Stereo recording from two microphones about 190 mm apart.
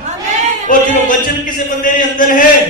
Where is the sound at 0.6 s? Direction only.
45° left (ahead or behind).